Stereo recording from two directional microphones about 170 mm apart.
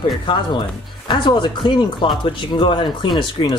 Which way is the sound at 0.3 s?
30° left (ahead or behind).